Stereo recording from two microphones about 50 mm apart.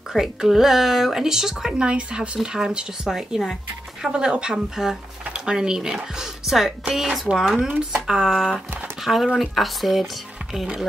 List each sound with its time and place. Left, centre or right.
0.1 s speech: centre